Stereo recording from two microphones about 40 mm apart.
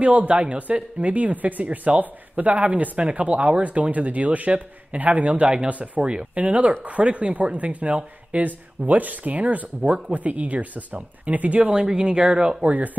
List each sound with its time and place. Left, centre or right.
0.0 s speech: right
9.8 s speech: right
10.1 s speech: right
11.7 s speech: right
12.6 s speech: right